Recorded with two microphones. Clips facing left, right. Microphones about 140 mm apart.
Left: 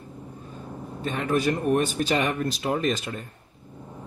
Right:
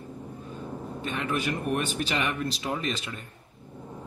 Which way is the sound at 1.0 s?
40° left (ahead or behind).